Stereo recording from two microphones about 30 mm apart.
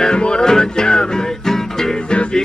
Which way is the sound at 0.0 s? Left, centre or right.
Left.